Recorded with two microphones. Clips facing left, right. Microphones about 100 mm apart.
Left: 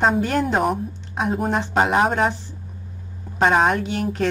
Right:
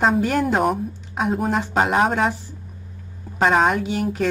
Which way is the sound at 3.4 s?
Centre (ahead or behind).